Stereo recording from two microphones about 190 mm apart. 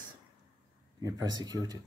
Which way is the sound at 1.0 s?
20° right (ahead or behind).